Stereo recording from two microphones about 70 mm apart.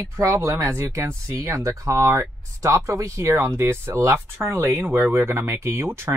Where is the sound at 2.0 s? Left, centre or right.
Right.